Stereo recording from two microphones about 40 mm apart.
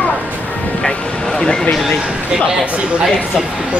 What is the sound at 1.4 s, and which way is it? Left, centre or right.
Speech, centre.